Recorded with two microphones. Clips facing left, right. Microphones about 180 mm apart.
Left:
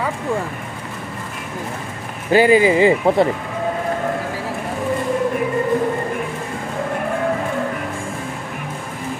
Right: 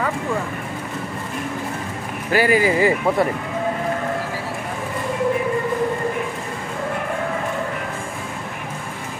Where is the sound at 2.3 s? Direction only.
20° left (ahead or behind).